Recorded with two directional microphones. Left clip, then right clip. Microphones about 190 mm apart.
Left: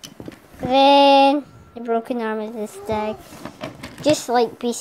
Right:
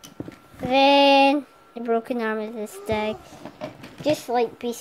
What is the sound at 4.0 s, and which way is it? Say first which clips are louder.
Speech: left 5 dB; 15° left (ahead or behind).